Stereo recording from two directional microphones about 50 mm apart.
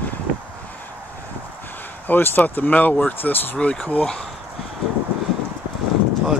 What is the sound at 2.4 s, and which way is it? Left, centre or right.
Speech, left.